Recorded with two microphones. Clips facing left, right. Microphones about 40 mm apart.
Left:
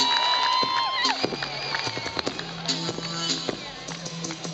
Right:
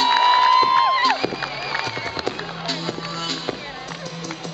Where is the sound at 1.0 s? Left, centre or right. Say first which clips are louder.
Right 6 dB; right.